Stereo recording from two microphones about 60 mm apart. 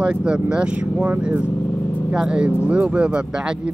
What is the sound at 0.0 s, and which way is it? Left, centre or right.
Speech, centre.